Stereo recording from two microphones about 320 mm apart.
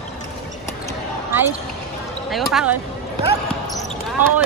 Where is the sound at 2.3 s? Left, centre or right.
Centre.